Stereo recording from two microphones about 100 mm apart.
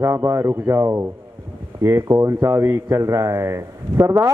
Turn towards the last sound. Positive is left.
turn(degrees=-30)  # may be behind; listen again after turning